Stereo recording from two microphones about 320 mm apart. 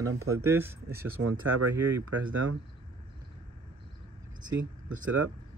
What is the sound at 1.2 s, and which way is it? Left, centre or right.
Speech, right.